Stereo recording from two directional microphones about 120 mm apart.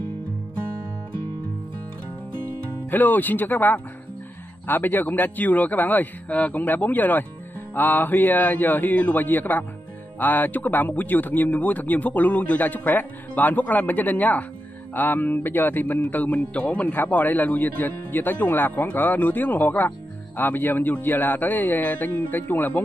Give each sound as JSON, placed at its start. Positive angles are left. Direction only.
{"t": 2.9, "sound": "speech", "side_deg": 15}